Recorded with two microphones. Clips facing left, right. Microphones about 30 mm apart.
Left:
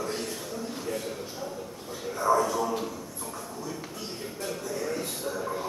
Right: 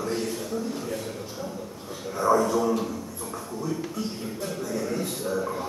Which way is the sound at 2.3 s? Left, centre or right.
Centre.